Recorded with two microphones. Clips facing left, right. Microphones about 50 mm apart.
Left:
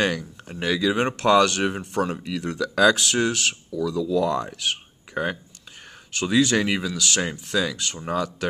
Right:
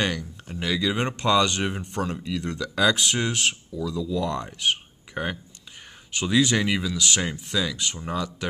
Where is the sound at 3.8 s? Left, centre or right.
Left.